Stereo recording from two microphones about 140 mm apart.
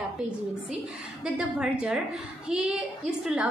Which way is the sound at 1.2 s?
5° right (ahead or behind).